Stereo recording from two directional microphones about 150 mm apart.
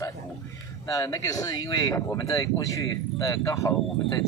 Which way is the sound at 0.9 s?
25° left (ahead or behind).